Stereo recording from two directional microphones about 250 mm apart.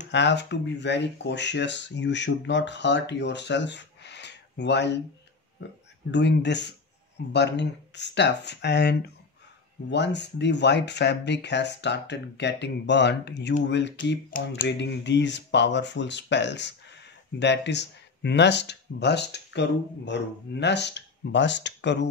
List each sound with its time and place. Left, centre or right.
0.1 s speech: left